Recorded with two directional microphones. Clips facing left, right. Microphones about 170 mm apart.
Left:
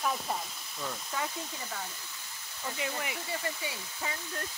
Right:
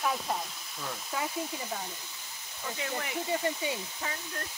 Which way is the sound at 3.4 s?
25° right (ahead or behind).